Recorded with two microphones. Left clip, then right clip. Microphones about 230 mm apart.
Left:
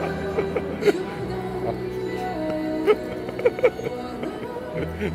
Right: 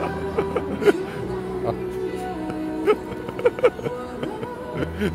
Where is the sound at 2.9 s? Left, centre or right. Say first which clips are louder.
Even; right.